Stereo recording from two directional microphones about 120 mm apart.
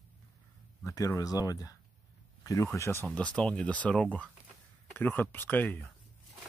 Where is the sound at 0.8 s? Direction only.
25° left (ahead or behind).